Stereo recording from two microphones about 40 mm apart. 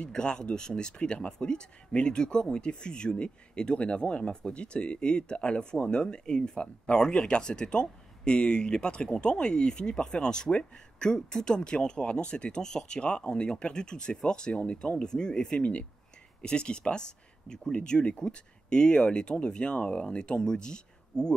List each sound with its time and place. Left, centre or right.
0.0 s speech: left
15.6 s speech: left